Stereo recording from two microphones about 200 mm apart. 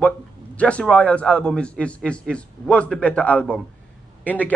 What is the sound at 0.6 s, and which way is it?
A man's voice, 5° left (ahead or behind).